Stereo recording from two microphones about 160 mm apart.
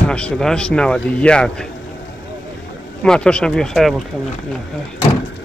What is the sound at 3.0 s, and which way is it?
Speech, 5° left (ahead or behind).